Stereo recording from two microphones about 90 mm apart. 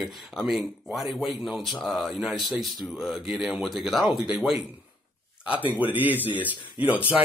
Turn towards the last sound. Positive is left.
turn(degrees=-15)  # may be behind; listen again after turning